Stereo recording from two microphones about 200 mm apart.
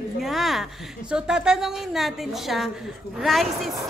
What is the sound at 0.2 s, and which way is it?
A woman's voice, centre (ahead or behind).